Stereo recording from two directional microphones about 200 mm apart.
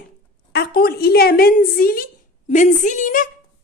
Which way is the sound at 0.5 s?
50° left (ahead or behind).